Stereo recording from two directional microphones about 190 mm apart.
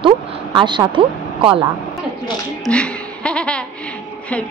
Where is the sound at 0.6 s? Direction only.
25° right (ahead or behind).